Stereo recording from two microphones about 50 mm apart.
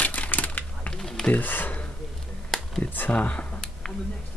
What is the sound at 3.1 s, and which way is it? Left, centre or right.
Speech, left.